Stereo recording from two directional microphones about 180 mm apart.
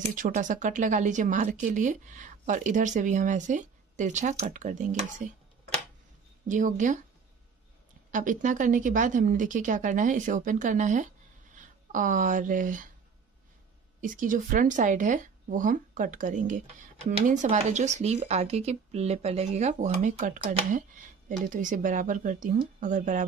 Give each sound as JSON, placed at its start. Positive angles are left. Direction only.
{"t": 0.0, "sound": "speech", "side_deg": -45}
{"t": 6.4, "sound": "speech", "side_deg": -45}
{"t": 8.1, "sound": "speech", "side_deg": -45}
{"t": 14.0, "sound": "speech", "side_deg": -45}